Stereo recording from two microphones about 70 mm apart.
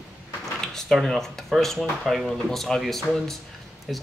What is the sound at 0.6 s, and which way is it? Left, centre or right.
Speech, centre.